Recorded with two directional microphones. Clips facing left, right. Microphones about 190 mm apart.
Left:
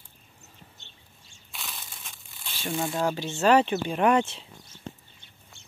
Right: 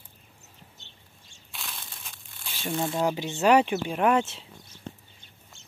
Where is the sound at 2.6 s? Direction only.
Centre (ahead or behind).